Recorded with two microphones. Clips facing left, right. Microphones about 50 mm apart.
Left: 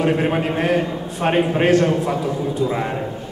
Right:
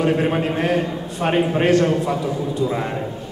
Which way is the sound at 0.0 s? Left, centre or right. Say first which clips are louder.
Even; centre.